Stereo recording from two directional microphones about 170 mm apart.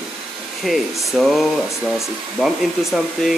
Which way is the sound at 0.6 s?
Centre (ahead or behind).